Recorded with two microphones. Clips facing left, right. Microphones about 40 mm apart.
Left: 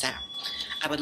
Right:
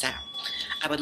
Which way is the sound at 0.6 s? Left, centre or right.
Centre.